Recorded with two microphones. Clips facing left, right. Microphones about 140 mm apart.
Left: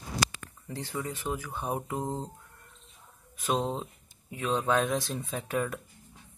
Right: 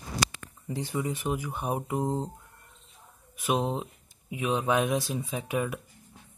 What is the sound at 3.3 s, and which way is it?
Speech, 10° right (ahead or behind).